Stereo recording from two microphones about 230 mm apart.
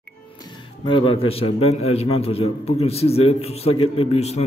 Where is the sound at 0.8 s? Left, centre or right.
Left.